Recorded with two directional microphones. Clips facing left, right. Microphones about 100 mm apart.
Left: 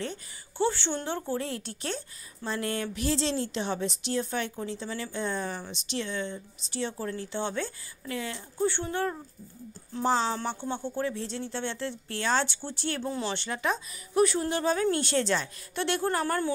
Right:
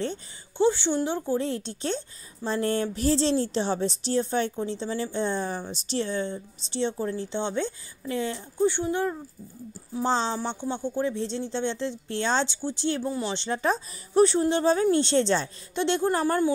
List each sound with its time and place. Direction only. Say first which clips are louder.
0.0 s a woman's voice: right 5 dB; 30° right (ahead or behind)
0.7 s a woman's voice: right 7 dB; 15° right (ahead or behind)
10.0 s a woman's voice: right 1 dB; 25° right (ahead or behind)
13.0 s speech: right 3 dB; 5° right (ahead or behind)
13.3 s a woman's voice: right 4 dB; 20° right (ahead or behind)
13.6 s a woman's voice: right 4 dB; 35° right (ahead or behind)